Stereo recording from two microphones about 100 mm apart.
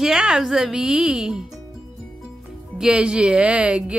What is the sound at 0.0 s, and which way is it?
Speech, 5° right (ahead or behind).